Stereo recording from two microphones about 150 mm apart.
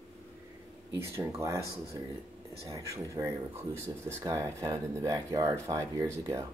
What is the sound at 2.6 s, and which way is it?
Speech, 20° right (ahead or behind).